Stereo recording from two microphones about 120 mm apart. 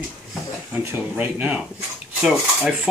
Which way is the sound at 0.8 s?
20° right (ahead or behind).